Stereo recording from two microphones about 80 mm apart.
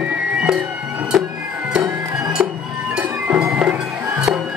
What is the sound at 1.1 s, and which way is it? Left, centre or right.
Music, centre.